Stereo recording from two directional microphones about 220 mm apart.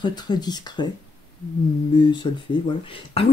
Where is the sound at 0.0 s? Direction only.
20° left (ahead or behind).